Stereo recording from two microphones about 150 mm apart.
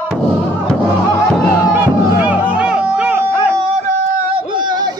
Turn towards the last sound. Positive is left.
turn(degrees=-50)  # may be behind; listen again after turning